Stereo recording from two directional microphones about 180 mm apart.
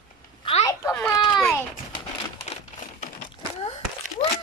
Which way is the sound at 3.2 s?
35° left (ahead or behind).